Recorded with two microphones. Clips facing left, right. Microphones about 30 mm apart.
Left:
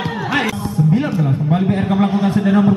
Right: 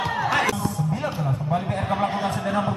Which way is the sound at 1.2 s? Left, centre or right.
Left.